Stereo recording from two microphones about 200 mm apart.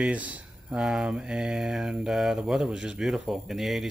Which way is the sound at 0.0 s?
5° right (ahead or behind).